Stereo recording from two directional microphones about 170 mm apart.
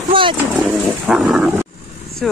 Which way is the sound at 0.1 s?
30° right (ahead or behind).